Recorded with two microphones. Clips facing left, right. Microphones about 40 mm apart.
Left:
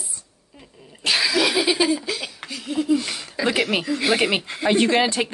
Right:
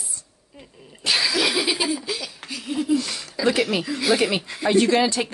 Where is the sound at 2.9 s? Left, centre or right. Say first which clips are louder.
Even; left.